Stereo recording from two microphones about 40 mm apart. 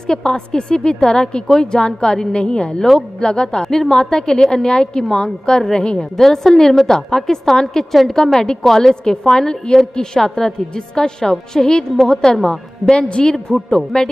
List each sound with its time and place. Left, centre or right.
0.0 s a woman's voice: centre
9.0 s a woman's voice: centre